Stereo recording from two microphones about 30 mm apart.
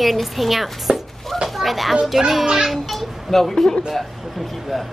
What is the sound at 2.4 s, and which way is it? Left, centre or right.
Speech, right.